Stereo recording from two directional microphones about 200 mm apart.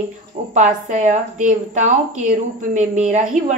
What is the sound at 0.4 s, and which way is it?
A woman's voice, 35° right (ahead or behind).